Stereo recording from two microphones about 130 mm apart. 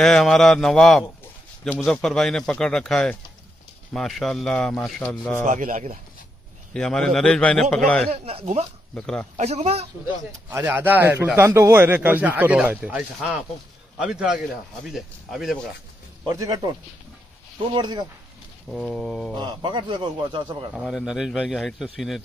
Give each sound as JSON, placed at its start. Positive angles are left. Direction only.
{"t": 0.0, "sound": "speech", "side_deg": 5}
{"t": 5.4, "sound": "speech", "side_deg": -80}
{"t": 6.7, "sound": "a man's voice", "side_deg": 5}
{"t": 8.1, "sound": "speech", "side_deg": -50}
{"t": 8.9, "sound": "a man's voice", "side_deg": 5}
{"t": 9.4, "sound": "speech", "side_deg": -55}
{"t": 10.5, "sound": "a man's voice", "side_deg": -15}
{"t": 16.3, "sound": "a man's voice", "side_deg": -25}
{"t": 17.7, "sound": "a man's voice", "side_deg": -35}
{"t": 18.7, "sound": "speech", "side_deg": 0}
{"t": 19.3, "sound": "a man's voice", "side_deg": -35}
{"t": 20.7, "sound": "speech", "side_deg": 0}